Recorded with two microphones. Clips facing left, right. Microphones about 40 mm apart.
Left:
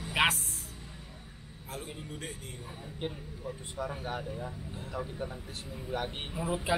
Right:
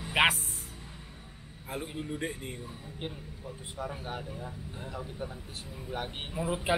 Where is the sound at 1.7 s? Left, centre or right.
Centre.